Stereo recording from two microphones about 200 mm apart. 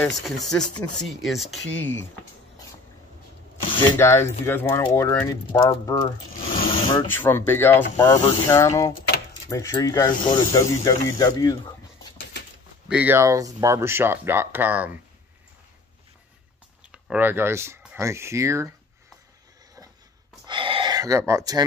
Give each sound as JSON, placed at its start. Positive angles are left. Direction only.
{"t": 0.0, "sound": "speech", "side_deg": 5}
{"t": 3.8, "sound": "speech", "side_deg": 10}
{"t": 12.8, "sound": "speech", "side_deg": -5}
{"t": 16.9, "sound": "speech", "side_deg": -10}
{"t": 20.4, "sound": "a sound", "side_deg": -25}